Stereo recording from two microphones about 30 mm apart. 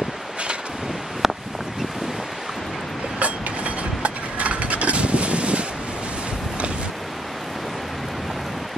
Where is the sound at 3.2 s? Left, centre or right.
Right.